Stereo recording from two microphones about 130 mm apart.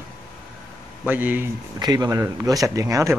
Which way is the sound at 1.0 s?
15° right (ahead or behind).